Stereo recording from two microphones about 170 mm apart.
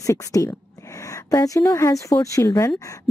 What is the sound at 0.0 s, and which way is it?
A woman's voice, 20° left (ahead or behind).